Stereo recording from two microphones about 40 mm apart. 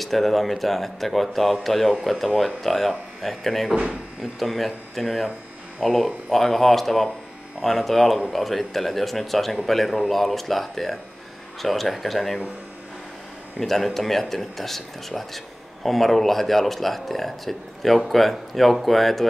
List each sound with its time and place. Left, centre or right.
0.0 s speech: centre
3.7 s speech: right
4.2 s speech: centre
13.6 s speech: centre